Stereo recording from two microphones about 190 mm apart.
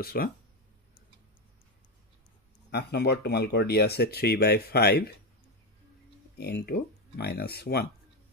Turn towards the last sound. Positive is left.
turn(degrees=55)  # may be behind; listen again after turning